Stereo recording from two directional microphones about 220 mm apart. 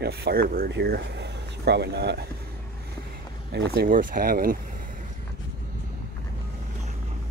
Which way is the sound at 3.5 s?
50° right (ahead or behind).